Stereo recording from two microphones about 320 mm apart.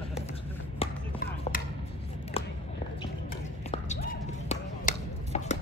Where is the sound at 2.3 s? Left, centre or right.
Centre.